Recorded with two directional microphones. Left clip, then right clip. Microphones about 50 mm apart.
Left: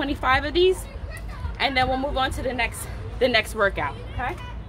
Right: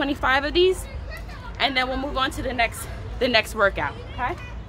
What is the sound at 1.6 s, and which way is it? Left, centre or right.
A woman's voice, right.